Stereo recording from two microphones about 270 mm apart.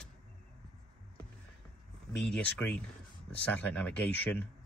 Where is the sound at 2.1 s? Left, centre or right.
Centre.